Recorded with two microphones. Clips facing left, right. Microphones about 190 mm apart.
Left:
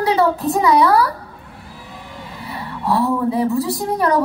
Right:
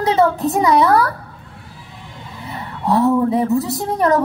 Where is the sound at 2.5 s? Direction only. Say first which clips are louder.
Right 2 dB; 20° right (ahead or behind).